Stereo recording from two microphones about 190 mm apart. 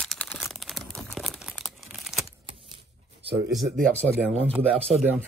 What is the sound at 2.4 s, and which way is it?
Typewriter, 30° right (ahead or behind).